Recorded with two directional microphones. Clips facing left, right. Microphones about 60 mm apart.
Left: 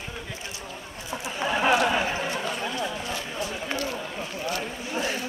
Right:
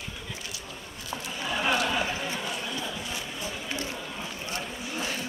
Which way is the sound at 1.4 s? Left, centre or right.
Left.